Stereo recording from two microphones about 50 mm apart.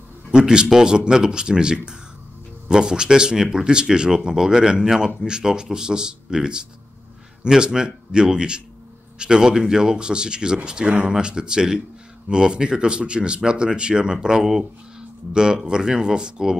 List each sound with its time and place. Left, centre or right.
0.3 s a man's voice: centre